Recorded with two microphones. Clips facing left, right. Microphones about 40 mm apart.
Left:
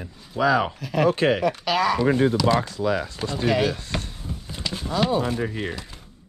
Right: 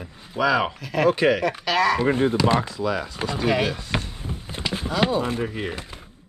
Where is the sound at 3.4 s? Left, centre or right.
Centre.